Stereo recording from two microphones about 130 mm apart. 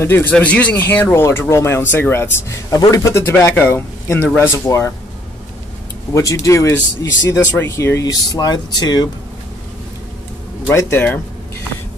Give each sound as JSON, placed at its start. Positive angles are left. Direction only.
{"t": 0.0, "sound": "speech", "side_deg": 15}
{"t": 6.1, "sound": "speech", "side_deg": 25}
{"t": 10.7, "sound": "speech", "side_deg": 20}